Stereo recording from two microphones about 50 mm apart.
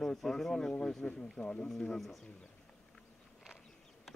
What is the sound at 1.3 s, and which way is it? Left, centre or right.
Speech, left.